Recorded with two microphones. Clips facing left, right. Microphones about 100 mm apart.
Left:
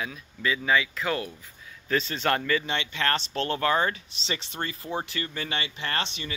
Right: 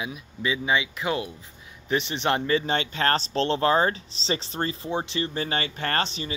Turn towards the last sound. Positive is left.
turn(degrees=-35)  # may be behind; listen again after turning